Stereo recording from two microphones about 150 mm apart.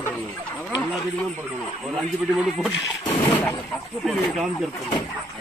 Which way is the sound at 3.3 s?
10° left (ahead or behind).